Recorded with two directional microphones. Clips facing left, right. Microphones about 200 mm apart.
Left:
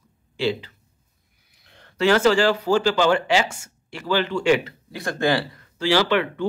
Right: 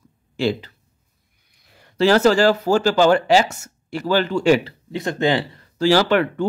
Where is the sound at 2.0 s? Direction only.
40° right (ahead or behind).